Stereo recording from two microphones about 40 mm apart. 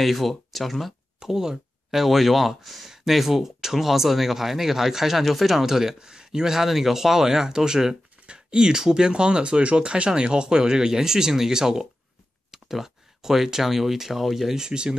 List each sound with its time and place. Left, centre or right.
0.0 s speech: centre
1.2 s speech: centre
14.7 s speech: right